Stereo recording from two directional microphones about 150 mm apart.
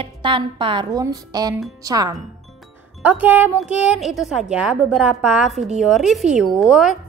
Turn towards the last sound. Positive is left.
turn(degrees=-5)  # may be behind; listen again after turning